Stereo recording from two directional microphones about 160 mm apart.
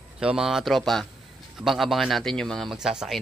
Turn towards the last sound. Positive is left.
turn(degrees=-5)  # may be behind; listen again after turning